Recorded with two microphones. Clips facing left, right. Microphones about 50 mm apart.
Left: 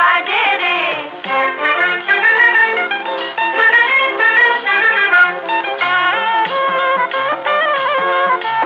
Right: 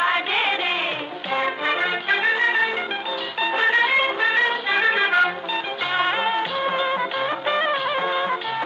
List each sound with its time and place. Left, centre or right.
0.0 s music: left